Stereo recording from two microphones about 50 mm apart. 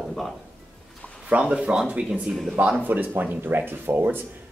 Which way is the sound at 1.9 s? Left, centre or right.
Centre.